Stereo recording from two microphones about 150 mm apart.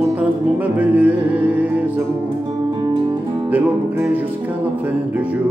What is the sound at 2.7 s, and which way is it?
Music, 30° right (ahead or behind).